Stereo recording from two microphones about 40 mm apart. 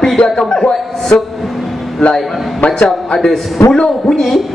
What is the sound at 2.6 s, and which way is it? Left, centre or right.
Speech, left.